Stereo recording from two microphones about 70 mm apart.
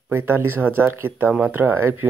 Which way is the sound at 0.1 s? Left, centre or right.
Right.